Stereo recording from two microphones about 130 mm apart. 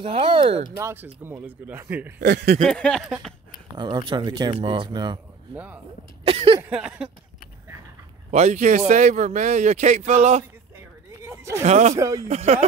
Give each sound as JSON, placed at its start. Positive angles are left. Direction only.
{"t": 0.0, "sound": "speech", "side_deg": -45}
{"t": 0.7, "sound": "a man's voice", "side_deg": -20}
{"t": 2.6, "sound": "a sound", "side_deg": 5}
{"t": 3.7, "sound": "speech", "side_deg": -35}
{"t": 5.5, "sound": "a man's voice", "side_deg": -15}
{"t": 6.2, "sound": "a sound", "side_deg": -45}
{"t": 6.7, "sound": "a man's voice", "side_deg": -10}
{"t": 8.3, "sound": "a man's voice", "side_deg": -60}
{"t": 11.6, "sound": "a man's voice", "side_deg": -60}
{"t": 11.9, "sound": "speech", "side_deg": -25}
{"t": 12.3, "sound": "a man's voice", "side_deg": -55}